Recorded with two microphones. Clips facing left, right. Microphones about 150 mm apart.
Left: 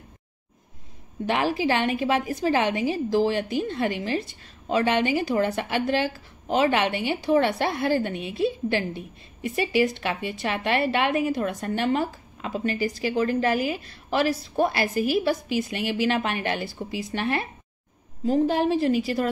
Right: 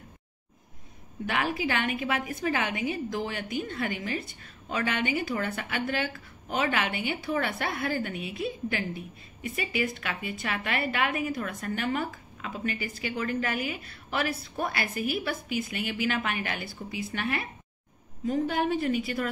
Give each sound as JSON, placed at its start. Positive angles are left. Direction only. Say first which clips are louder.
{"t": 1.2, "sound": "a woman's voice", "louder": "left 6 dB", "side_deg": 35}